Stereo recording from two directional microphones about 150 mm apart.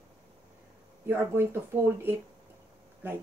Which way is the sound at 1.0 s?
15° right (ahead or behind).